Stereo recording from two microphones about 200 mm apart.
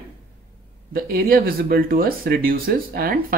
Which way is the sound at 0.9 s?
50° right (ahead or behind).